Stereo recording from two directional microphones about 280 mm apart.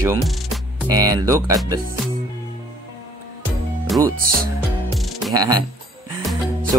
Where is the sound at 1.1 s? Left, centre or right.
Centre.